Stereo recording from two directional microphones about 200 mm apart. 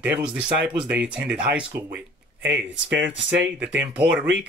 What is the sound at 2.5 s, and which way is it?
Speech, 65° right (ahead or behind).